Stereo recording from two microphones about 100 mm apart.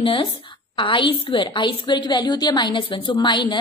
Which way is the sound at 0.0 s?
60° left (ahead or behind).